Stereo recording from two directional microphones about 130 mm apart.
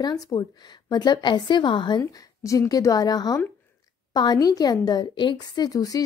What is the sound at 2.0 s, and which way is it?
A woman's voice, 25° left (ahead or behind).